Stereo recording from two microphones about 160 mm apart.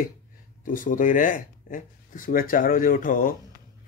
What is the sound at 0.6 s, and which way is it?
A man's voice, 55° left (ahead or behind).